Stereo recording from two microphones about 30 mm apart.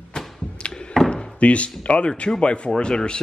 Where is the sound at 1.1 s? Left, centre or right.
Left.